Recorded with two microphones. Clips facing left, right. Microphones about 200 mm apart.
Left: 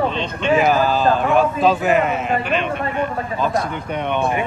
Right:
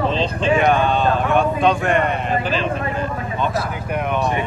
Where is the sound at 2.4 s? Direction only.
30° right (ahead or behind).